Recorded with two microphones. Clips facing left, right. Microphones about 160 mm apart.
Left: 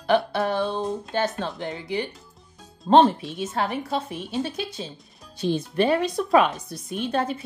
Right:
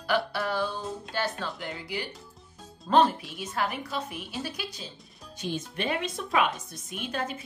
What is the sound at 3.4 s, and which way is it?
A woman's voice, 25° left (ahead or behind).